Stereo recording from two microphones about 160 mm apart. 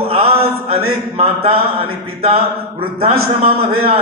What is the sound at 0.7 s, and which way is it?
A man's voice, 40° right (ahead or behind).